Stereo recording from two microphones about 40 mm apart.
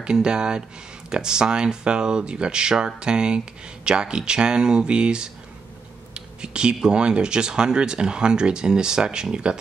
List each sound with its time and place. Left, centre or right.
0.0 s speech: right